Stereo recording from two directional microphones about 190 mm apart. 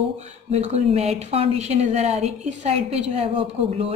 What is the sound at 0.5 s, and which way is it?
Speech, 35° right (ahead or behind).